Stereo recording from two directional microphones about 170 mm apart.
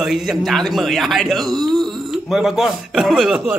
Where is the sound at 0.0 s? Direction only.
Centre (ahead or behind).